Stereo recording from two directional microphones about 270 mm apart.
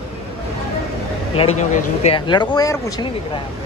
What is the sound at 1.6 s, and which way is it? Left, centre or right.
Speech, left.